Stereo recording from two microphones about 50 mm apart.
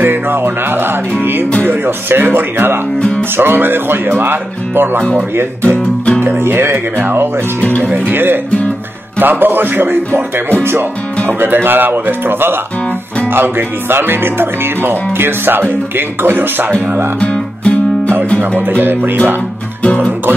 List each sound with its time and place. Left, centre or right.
0.0 s music: right
3.0 s speech: left
3.3 s music: right
6.2 s music: right
7.6 s speech: left
8.1 s music: right
11.2 s music: right
17.2 s music: left
18.7 s music: right